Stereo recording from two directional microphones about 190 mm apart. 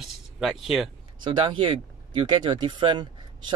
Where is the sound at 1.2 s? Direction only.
25° right (ahead or behind).